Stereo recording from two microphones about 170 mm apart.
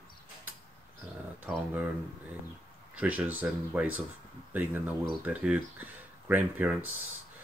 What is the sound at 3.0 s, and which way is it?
Speech, 10° right (ahead or behind).